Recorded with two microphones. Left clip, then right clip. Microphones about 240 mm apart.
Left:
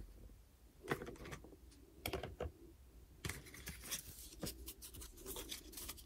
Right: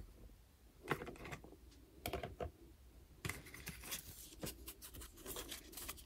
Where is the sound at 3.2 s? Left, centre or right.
Right.